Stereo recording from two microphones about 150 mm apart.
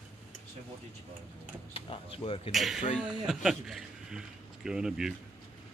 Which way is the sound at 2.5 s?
Centre (ahead or behind).